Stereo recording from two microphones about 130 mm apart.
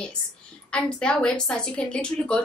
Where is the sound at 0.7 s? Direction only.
5° left (ahead or behind).